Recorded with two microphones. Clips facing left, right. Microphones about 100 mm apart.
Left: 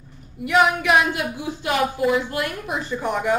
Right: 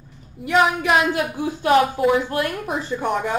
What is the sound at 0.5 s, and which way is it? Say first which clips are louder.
Speech: even; 35° right (ahead or behind).